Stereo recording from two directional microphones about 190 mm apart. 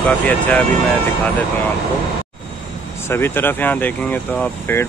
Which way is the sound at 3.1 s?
10° left (ahead or behind).